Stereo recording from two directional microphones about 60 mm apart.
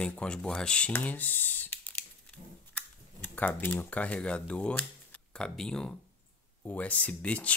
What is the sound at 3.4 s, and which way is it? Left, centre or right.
Speech, left.